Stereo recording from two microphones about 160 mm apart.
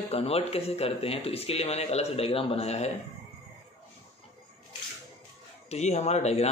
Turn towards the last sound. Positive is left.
turn(degrees=45)  # may be behind; listen again after turning